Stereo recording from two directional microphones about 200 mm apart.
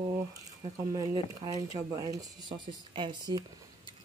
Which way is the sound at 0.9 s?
20° right (ahead or behind).